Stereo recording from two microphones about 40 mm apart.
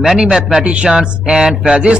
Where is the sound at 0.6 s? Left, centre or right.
Right.